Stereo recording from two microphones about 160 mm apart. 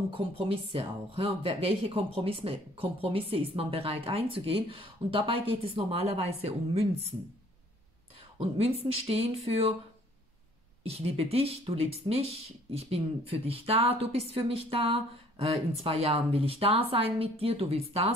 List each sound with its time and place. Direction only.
0.1 s speech: 35° right (ahead or behind)
8.4 s speech: 40° right (ahead or behind)
10.8 s speech: 40° right (ahead or behind)